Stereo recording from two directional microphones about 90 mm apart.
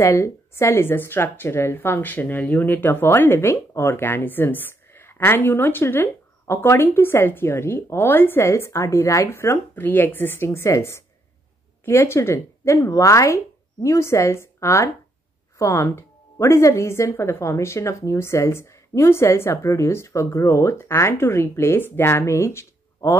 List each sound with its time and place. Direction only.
0.0 s speech: 30° left (ahead or behind)